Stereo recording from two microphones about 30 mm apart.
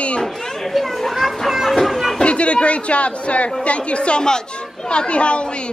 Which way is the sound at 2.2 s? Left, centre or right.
Left.